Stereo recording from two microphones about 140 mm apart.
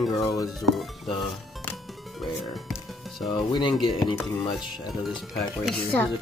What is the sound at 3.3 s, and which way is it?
Speech, 35° left (ahead or behind).